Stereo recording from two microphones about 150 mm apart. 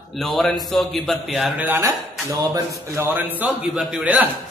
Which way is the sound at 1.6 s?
15° right (ahead or behind).